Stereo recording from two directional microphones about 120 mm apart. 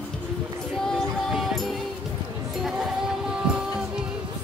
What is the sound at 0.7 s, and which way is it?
Music, 5° left (ahead or behind).